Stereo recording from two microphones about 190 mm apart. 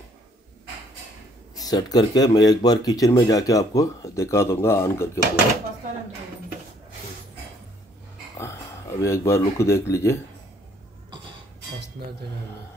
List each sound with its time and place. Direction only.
1.5 s speech: 20° left (ahead or behind)
9.0 s speech: 15° left (ahead or behind)